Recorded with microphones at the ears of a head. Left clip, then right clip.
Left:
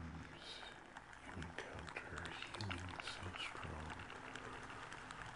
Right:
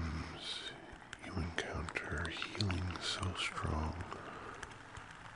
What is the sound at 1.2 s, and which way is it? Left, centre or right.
Music, right.